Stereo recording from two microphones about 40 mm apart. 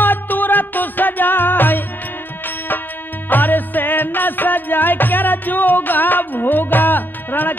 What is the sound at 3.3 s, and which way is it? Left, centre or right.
Music, left.